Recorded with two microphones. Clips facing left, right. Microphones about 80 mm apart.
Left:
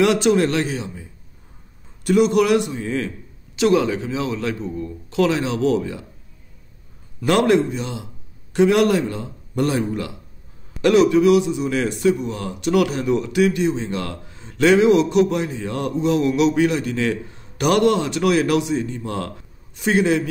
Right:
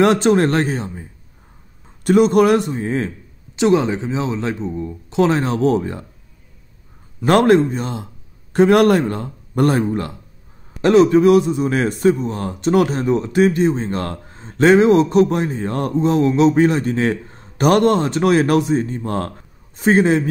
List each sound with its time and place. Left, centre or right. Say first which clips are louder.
0.0 s a man's voice: right 3 dB; right
2.0 s a man's voice: right 3 dB; right
5.3 s a man's voice: right 3 dB; right
7.2 s a man's voice: right 4 dB; right